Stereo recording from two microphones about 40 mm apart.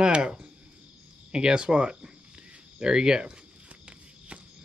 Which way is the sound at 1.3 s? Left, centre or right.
Right.